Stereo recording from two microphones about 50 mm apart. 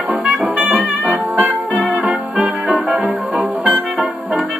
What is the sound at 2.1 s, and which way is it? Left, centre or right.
Music, centre.